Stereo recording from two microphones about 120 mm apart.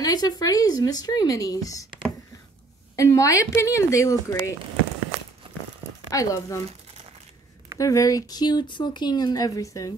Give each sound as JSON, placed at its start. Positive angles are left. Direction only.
{"t": 0.0, "sound": "speech", "side_deg": 35}
{"t": 3.0, "sound": "a woman's voice", "side_deg": 25}
{"t": 6.0, "sound": "speech", "side_deg": 30}
{"t": 7.8, "sound": "speech", "side_deg": 25}